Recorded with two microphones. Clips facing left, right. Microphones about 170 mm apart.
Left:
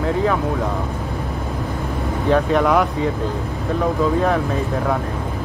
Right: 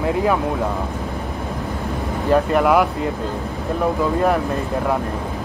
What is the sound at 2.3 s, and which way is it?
Speech, 5° right (ahead or behind).